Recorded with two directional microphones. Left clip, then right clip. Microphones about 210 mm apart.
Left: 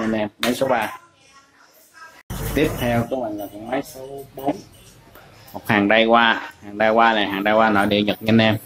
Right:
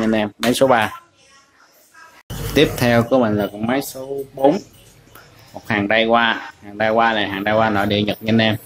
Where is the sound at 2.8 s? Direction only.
50° right (ahead or behind).